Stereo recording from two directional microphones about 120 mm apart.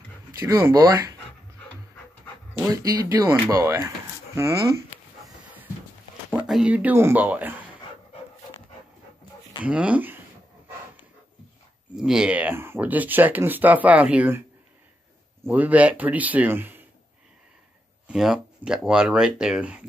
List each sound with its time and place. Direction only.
0.4 s speech: 25° right (ahead or behind)
2.7 s speech: 30° right (ahead or behind)
6.3 s speech: 5° right (ahead or behind)
9.6 s speech: 10° right (ahead or behind)
12.0 s speech: 5° right (ahead or behind)
15.4 s speech: 15° right (ahead or behind)
18.0 s speech: 5° right (ahead or behind)